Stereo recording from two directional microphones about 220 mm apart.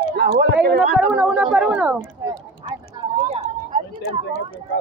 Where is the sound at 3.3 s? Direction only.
30° right (ahead or behind).